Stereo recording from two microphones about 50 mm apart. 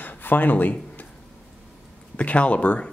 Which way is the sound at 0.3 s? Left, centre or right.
Left.